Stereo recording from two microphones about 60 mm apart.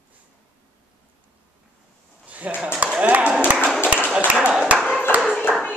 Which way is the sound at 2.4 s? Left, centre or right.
Right.